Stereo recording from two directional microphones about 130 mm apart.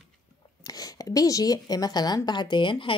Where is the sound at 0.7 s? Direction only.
30° left (ahead or behind).